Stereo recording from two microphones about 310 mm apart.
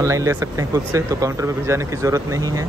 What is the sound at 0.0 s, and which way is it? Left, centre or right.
Speech, centre.